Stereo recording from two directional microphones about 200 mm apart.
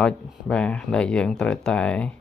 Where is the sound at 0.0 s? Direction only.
5° left (ahead or behind).